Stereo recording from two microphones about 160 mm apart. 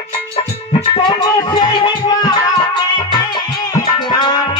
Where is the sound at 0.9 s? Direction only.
25° left (ahead or behind).